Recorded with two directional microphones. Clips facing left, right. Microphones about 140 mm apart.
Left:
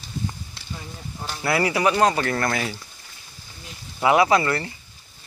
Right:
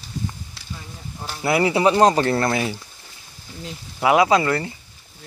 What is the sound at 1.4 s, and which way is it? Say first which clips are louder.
Speech: right 3 dB; 25° right (ahead or behind).